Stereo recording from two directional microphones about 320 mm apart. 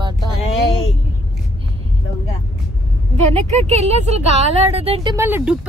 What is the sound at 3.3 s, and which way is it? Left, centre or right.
Speech, centre.